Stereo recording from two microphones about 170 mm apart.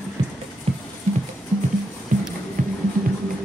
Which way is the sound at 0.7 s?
40° right (ahead or behind).